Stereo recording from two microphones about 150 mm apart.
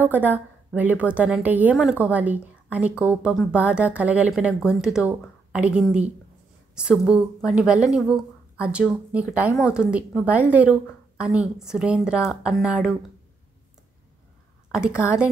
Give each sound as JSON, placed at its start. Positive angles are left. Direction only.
{"t": 0.0, "sound": "a woman's voice", "side_deg": -10}
{"t": 9.5, "sound": "a woman's voice", "side_deg": 20}
{"t": 9.8, "sound": "a woman's voice", "side_deg": -5}